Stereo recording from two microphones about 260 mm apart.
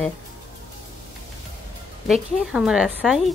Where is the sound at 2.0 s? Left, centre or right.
Centre.